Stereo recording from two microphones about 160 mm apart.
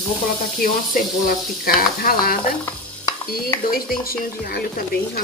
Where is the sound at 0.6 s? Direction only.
65° left (ahead or behind).